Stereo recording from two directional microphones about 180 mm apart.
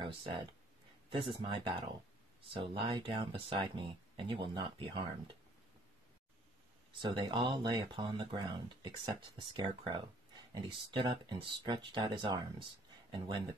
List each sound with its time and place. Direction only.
0.0 s speech: 30° right (ahead or behind)
7.0 s speech: 25° right (ahead or behind)